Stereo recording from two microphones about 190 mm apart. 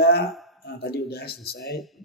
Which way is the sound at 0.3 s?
Centre (ahead or behind).